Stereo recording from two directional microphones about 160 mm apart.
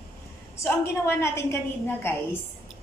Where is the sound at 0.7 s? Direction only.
15° left (ahead or behind).